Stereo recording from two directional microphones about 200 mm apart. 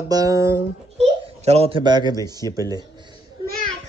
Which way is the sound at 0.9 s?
30° right (ahead or behind).